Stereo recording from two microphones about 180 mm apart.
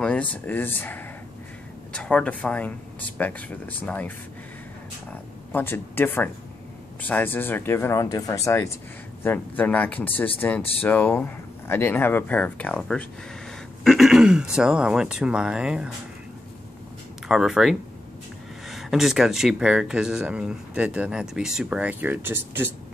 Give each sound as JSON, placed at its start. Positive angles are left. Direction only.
{"t": 0.0, "sound": "speech", "side_deg": 5}
{"t": 5.5, "sound": "speech", "side_deg": 10}
{"t": 17.3, "sound": "speech", "side_deg": 0}